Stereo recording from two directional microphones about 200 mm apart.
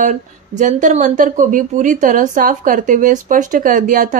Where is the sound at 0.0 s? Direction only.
40° right (ahead or behind).